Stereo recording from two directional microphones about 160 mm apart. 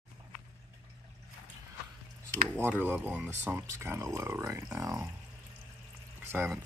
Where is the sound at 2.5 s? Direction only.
15° right (ahead or behind).